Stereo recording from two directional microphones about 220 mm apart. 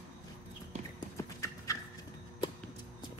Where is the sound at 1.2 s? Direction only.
15° left (ahead or behind).